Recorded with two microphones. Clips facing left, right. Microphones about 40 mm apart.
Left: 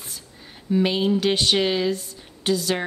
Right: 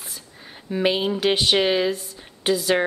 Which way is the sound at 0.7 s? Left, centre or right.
Centre.